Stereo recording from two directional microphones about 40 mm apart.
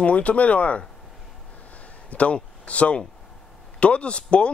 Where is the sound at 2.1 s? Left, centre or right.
Left.